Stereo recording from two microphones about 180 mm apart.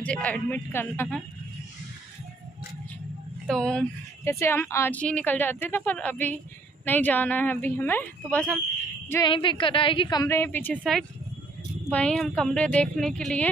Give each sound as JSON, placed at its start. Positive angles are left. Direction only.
{"t": 0.0, "sound": "speech", "side_deg": 10}
{"t": 3.4, "sound": "a woman's voice", "side_deg": 5}
{"t": 4.2, "sound": "speech", "side_deg": 15}
{"t": 9.3, "sound": "a woman's voice", "side_deg": 30}
{"t": 10.2, "sound": "a woman's voice", "side_deg": 10}